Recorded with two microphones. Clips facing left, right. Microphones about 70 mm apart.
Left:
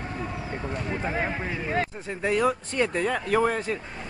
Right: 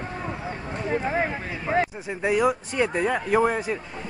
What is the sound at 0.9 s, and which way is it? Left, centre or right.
Speech, right.